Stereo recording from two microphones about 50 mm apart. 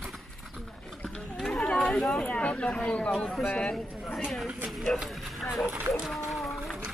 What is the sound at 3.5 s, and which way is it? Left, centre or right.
Speech, left.